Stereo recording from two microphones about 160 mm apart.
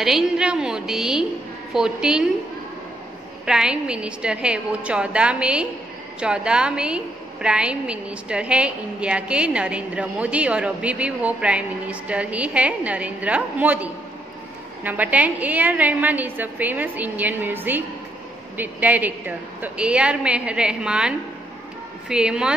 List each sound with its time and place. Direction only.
0.0 s a woman's voice: centre (ahead or behind)
3.4 s a woman's voice: 5° right (ahead or behind)
22.1 s a woman's voice: 5° right (ahead or behind)